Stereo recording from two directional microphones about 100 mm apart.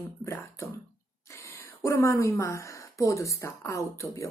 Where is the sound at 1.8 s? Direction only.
30° left (ahead or behind).